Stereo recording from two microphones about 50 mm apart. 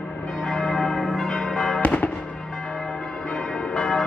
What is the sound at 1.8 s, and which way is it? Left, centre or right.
Fireworks, left.